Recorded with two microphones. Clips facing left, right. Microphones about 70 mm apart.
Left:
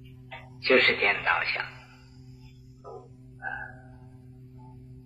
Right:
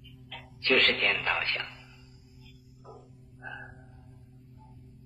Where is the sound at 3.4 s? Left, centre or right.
Left.